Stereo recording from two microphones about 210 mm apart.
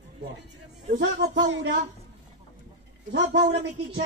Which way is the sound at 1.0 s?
55° right (ahead or behind).